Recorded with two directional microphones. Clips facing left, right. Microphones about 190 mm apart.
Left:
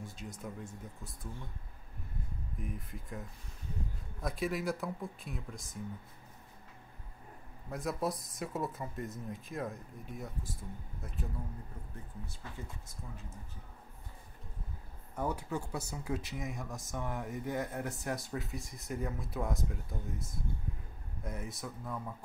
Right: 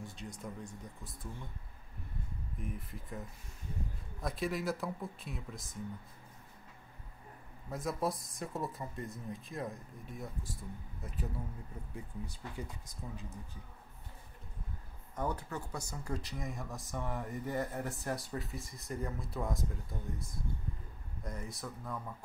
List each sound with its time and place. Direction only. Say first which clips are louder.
0.0 s speech: left 1 dB; centre (ahead or behind)
2.6 s speech: even; centre (ahead or behind)
7.7 s speech: even; centre (ahead or behind)
11.9 s speech: right 3 dB; 15° right (ahead or behind)
15.1 s speech: left 2 dB; 10° left (ahead or behind)